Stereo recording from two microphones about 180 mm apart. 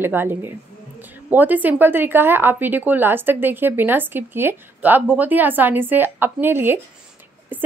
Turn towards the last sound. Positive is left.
turn(degrees=-10)  # may be behind; listen again after turning